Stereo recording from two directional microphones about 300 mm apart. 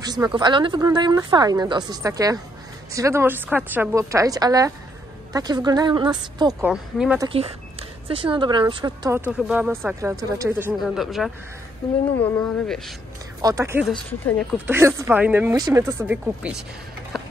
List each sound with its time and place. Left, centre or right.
0.0 s speech: centre
6.7 s speech: centre
7.2 s speech: centre
13.4 s speech: centre